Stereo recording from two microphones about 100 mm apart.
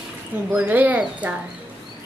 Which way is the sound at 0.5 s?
15° right (ahead or behind).